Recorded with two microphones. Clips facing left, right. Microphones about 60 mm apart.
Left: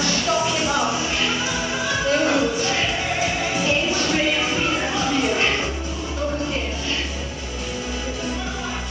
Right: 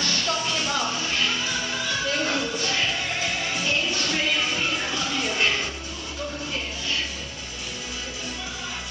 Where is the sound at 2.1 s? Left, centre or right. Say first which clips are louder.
Left 10 dB; centre.